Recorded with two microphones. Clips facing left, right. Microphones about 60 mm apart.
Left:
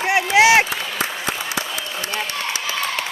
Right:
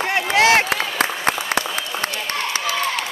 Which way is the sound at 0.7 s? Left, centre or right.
Right.